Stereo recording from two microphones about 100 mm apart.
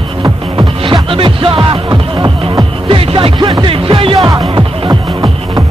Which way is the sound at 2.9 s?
65° right (ahead or behind).